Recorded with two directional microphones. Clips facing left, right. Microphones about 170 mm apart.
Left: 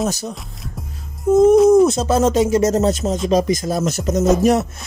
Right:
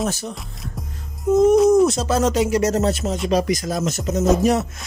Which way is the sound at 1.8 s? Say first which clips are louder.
Left 3 dB; 25° left (ahead or behind).